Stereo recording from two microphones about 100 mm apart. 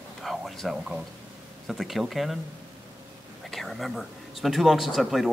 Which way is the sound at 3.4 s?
Centre (ahead or behind).